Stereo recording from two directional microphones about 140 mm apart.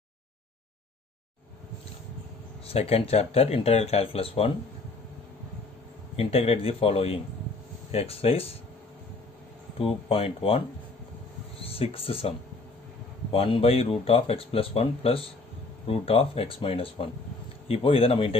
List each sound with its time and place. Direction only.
2.6 s speech: 45° left (ahead or behind)
6.1 s speech: 45° left (ahead or behind)
9.8 s speech: 45° left (ahead or behind)
11.6 s speech: 45° left (ahead or behind)